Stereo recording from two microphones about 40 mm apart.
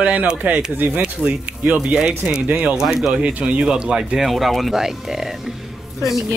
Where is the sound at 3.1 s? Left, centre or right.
Right.